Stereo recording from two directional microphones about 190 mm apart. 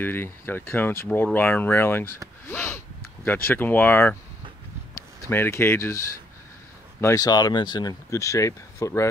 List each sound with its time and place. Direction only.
0.0 s speech: 10° left (ahead or behind)